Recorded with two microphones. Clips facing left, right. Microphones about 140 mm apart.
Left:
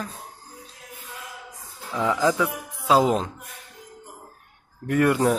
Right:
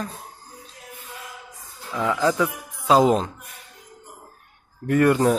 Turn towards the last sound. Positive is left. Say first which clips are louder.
# right 2 dB
turn(degrees=5)  # may be behind; listen again after turning